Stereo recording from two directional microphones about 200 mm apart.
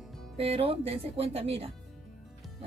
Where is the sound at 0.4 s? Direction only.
30° right (ahead or behind).